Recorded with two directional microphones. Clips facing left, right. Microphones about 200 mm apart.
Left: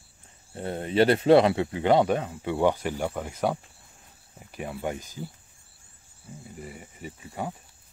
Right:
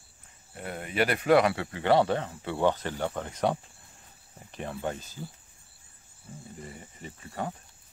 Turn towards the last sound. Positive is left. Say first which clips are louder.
# left 1 dB
turn(degrees=10)  # may be behind; listen again after turning